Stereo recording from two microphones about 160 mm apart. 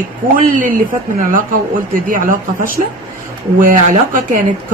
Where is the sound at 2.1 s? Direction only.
55° right (ahead or behind).